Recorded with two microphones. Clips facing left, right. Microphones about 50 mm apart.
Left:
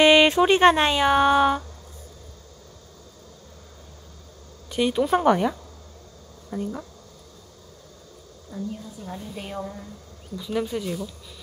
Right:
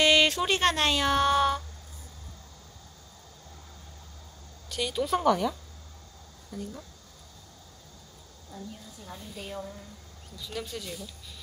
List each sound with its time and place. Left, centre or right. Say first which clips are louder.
0.0 s speech: left 7 dB; left
4.6 s speech: left 7 dB; left
6.5 s speech: left 9 dB; left
10.3 s speech: left 10 dB; centre